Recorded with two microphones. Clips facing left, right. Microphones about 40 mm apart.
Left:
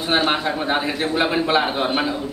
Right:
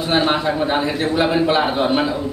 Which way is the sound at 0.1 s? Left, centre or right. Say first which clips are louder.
Right 2 dB; centre.